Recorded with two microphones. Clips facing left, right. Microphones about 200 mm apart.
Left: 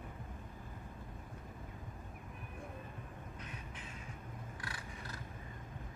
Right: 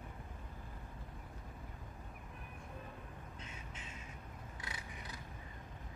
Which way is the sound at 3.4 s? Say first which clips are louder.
Left 2 dB; 25° right (ahead or behind).